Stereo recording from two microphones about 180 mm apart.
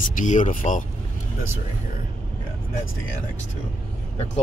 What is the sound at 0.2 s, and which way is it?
Speech, 45° left (ahead or behind).